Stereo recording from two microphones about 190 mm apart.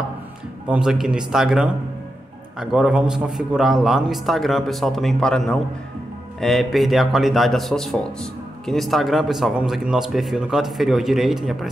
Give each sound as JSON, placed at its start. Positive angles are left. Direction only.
{"t": 0.7, "sound": "a man's voice", "side_deg": -5}